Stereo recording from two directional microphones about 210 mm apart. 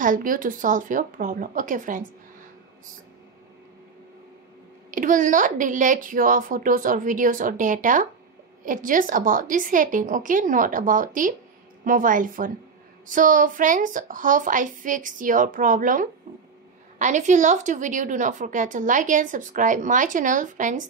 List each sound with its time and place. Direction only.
0.0 s a woman's voice: 40° right (ahead or behind)
4.9 s a woman's voice: 40° right (ahead or behind)